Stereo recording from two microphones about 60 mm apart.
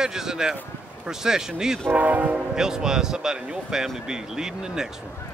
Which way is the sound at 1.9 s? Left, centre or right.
Right.